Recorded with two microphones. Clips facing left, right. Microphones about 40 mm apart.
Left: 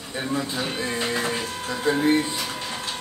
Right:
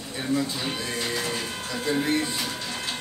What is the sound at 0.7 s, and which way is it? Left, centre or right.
Speech, left.